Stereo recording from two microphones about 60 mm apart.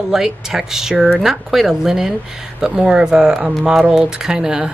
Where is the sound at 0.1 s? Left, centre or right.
Centre.